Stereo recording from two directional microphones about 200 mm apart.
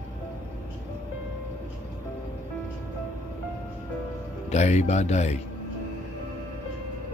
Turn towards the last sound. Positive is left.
turn(degrees=35)  # may be behind; listen again after turning